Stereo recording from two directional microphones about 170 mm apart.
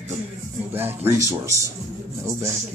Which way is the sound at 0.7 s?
10° right (ahead or behind).